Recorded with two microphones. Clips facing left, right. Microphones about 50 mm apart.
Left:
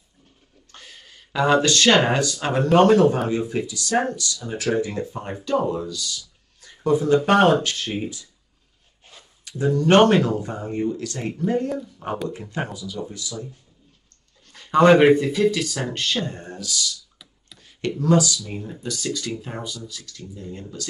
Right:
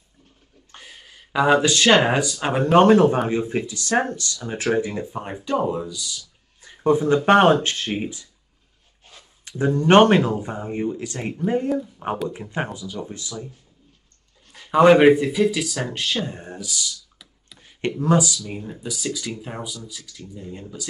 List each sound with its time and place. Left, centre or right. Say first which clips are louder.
0.7 s speech: right 1 dB; centre
6.6 s a sound: right 2 dB; right
7.2 s speech: right 4 dB; right
9.4 s speech: even; right
14.4 s speech: right 1 dB; centre
18.4 s speech: even; centre